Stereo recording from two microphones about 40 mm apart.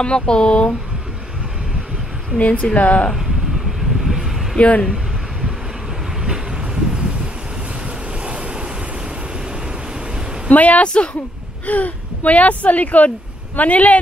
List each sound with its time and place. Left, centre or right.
0.0 s speech: left
2.3 s speech: left
4.0 s vehicle: centre
4.6 s speech: left
6.2 s vehicle: centre
8.2 s vehicle: right
10.5 s speech: left